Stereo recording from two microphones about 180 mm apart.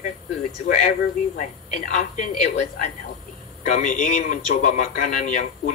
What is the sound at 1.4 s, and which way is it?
Speech, 45° left (ahead or behind).